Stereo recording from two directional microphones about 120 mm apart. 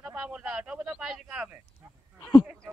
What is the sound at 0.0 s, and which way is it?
Speech, 5° right (ahead or behind).